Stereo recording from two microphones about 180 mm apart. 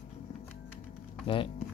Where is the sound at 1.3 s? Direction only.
30° left (ahead or behind).